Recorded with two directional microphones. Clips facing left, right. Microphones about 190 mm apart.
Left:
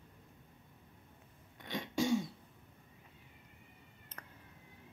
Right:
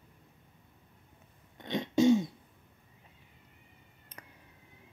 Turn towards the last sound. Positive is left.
turn(degrees=-10)  # may be behind; listen again after turning